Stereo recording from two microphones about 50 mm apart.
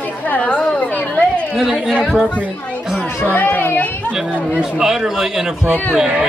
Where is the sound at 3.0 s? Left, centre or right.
Left.